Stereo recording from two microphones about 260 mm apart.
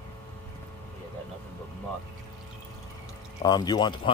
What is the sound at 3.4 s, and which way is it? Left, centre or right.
Speech, centre.